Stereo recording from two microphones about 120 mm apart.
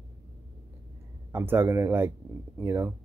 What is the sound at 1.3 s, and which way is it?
Speech, 20° right (ahead or behind).